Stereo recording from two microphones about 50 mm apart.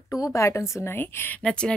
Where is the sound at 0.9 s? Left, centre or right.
Left.